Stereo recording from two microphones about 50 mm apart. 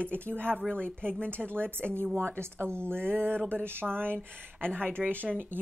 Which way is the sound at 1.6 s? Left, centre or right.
Right.